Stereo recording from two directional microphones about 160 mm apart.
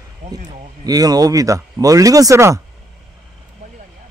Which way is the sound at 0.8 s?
25° right (ahead or behind).